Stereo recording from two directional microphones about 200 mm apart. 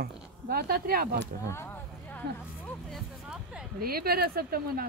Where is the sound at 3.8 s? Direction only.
50° right (ahead or behind).